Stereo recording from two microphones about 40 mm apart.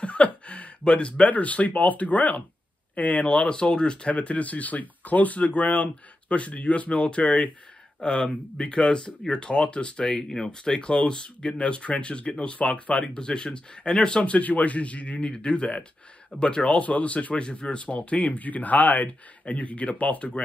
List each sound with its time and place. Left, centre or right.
0.0 s a sound: left
1.3 s speech: left
4.1 s speech: left
8.0 s speech: left
10.3 s speech: centre
14.3 s speech: left
16.8 s speech: left
17.9 s speech: left
19.0 s speech: left